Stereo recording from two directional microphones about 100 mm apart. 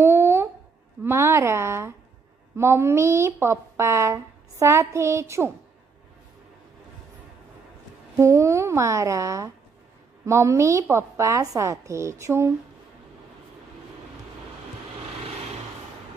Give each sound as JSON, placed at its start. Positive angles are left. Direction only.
{"t": 0.0, "sound": "a sound", "side_deg": -25}
{"t": 1.0, "sound": "a woman's voice", "side_deg": -25}
{"t": 8.2, "sound": "a woman's voice", "side_deg": -30}